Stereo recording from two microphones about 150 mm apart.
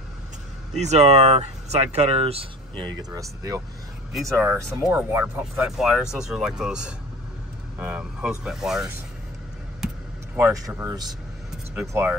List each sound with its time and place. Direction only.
0.7 s speech: 50° right (ahead or behind)
2.9 s speech: 25° right (ahead or behind); by 8.8 s 5° right (ahead or behind)
10.3 s speech: 15° right (ahead or behind)